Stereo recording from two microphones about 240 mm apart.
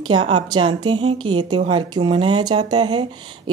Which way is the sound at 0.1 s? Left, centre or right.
Centre.